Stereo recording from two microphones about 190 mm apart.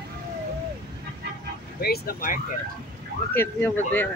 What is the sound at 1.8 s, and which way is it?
Speech, 55° left (ahead or behind).